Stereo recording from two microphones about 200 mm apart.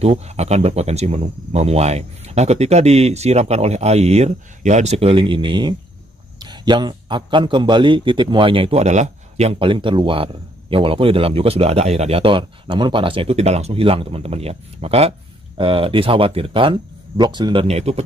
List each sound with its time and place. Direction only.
0.0 s a man's voice: 30° right (ahead or behind)